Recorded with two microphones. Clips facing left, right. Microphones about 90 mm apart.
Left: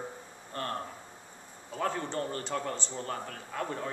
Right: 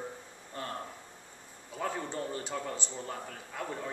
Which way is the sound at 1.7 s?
5° right (ahead or behind).